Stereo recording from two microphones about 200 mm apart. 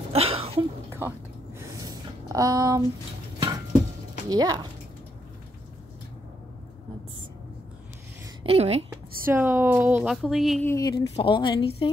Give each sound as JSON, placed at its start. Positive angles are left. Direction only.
{"t": 0.1, "sound": "a sound", "side_deg": -30}
{"t": 0.9, "sound": "a sound", "side_deg": -10}
{"t": 4.3, "sound": "speech", "side_deg": -20}
{"t": 8.5, "sound": "a woman's voice", "side_deg": -30}
{"t": 8.9, "sound": "speech", "side_deg": -10}
{"t": 10.7, "sound": "a woman's voice", "side_deg": 20}